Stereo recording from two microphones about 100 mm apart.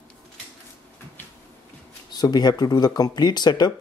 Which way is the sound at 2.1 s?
45° left (ahead or behind).